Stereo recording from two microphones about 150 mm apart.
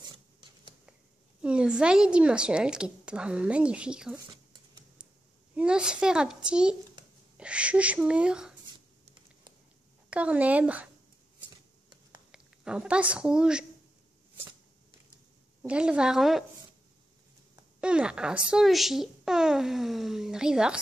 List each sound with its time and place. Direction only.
0.1 s a sound: 30° right (ahead or behind)
1.4 s a woman's voice: 5° right (ahead or behind)
5.6 s a woman's voice: 5° right (ahead or behind)
9.0 s computer keyboard: 30° right (ahead or behind)
10.0 s a woman's voice: 10° right (ahead or behind)
12.3 s speech: 5° right (ahead or behind)
15.6 s speech: 5° right (ahead or behind)
17.7 s speech: 5° right (ahead or behind)